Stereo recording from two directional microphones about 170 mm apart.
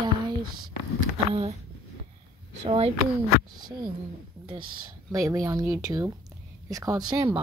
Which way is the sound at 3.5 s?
25° right (ahead or behind).